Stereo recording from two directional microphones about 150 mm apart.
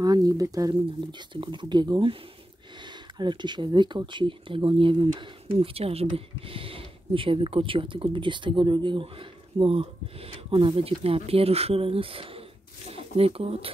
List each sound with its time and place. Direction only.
0.0 s speech: 25° right (ahead or behind)
3.2 s speech: 30° right (ahead or behind)